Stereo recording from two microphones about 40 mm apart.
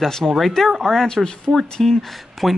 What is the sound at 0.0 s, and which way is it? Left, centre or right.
Speech, centre.